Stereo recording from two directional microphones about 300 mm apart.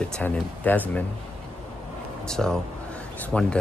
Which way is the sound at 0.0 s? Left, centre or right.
Centre.